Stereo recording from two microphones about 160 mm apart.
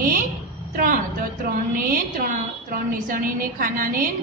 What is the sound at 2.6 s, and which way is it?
A woman's voice, 60° right (ahead or behind).